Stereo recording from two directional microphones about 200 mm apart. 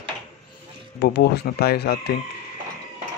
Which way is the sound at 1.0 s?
55° left (ahead or behind).